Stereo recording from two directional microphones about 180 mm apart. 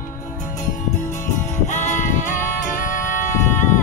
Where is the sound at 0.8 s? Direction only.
15° left (ahead or behind).